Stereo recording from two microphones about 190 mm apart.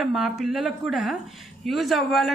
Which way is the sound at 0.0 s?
Centre (ahead or behind).